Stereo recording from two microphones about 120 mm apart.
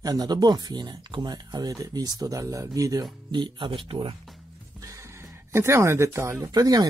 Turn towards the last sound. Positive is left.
turn(degrees=-30)  # may be behind; listen again after turning